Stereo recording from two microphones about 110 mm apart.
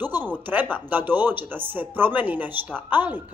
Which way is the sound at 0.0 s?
15° right (ahead or behind).